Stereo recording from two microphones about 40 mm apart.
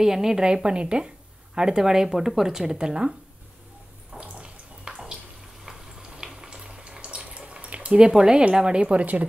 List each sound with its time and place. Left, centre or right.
0.0 s a woman's voice: centre
4.2 s a sound: right
5.7 s boiling: centre
7.0 s drip: right
7.9 s speech: right